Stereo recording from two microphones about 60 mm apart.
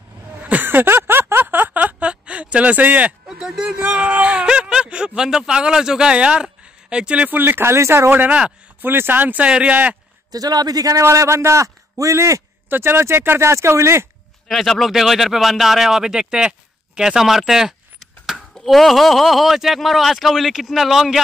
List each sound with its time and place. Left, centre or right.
0.4 s a sound: right
3.3 s a sound: centre
3.8 s whimper: right
7.2 s speech: right
8.1 s speech: right
10.3 s a man's voice: right
11.0 s a man's voice: right
12.6 s speech: right
13.4 s speech: right
14.5 s speech: centre